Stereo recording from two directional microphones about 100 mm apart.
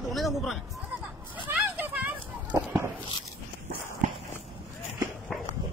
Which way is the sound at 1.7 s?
15° right (ahead or behind).